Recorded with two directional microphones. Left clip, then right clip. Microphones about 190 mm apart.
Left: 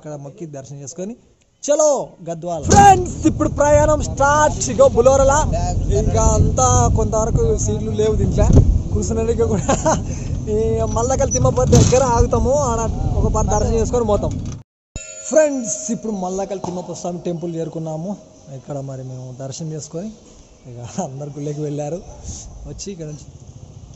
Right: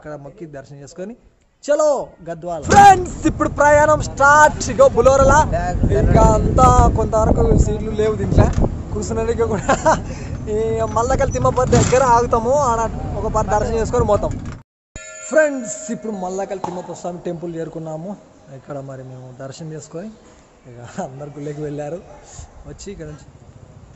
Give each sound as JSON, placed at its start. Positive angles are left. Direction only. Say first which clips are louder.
{"t": 0.0, "sound": "speech", "louder": "even", "side_deg": 0}
{"t": 5.5, "sound": "speech", "louder": "right 2 dB", "side_deg": -40}
{"t": 5.9, "sound": "speech", "louder": "right 5 dB", "side_deg": -20}